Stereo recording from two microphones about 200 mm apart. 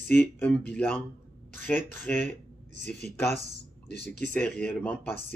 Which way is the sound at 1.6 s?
10° left (ahead or behind).